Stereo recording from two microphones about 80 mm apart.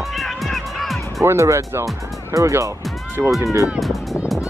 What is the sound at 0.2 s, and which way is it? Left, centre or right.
Music, centre.